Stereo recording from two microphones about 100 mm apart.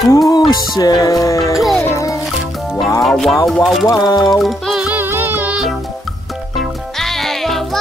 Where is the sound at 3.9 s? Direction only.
35° left (ahead or behind).